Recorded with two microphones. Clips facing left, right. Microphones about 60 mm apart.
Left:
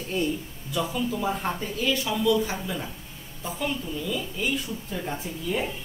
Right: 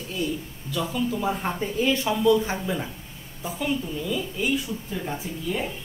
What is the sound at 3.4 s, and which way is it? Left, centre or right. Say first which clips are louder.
A woman's voice: right 3 dB; centre.